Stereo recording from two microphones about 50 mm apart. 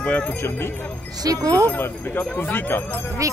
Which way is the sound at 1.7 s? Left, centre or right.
Left.